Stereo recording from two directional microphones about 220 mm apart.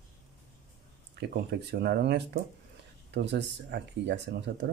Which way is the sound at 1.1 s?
50° right (ahead or behind).